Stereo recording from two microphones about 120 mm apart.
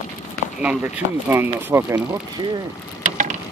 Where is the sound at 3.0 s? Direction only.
90° right.